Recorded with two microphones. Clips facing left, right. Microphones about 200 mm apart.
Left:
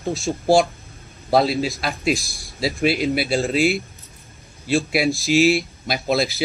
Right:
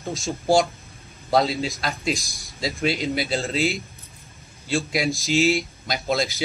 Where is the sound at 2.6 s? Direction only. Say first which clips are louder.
Left 4 dB; 10° left (ahead or behind).